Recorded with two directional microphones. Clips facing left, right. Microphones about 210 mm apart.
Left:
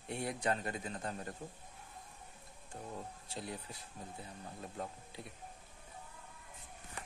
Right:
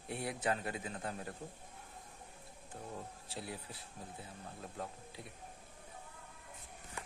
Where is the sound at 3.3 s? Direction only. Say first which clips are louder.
Left 1 dB; 5° right (ahead or behind).